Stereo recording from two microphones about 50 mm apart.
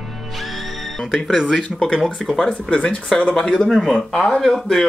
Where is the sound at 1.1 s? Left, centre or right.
Centre.